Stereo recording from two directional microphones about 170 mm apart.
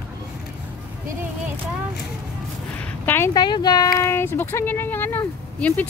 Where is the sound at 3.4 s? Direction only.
25° left (ahead or behind).